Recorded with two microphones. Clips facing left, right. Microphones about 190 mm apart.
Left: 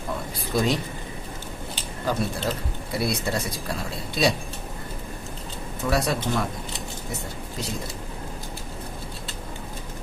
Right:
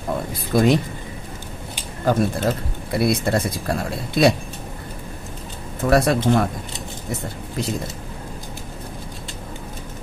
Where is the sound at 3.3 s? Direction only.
55° right (ahead or behind).